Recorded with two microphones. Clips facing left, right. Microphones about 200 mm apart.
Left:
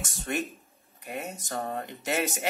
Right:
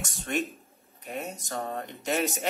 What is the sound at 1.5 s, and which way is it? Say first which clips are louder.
Speech: left 3 dB; 5° left (ahead or behind).